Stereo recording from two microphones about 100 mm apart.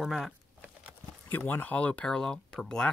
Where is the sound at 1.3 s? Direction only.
20° left (ahead or behind).